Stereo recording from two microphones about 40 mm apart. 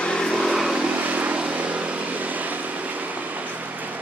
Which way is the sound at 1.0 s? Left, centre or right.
Right.